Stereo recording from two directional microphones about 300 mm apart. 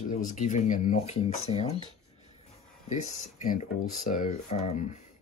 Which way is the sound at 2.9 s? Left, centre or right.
Left.